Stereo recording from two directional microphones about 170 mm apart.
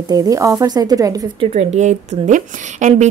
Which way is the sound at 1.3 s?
40° right (ahead or behind).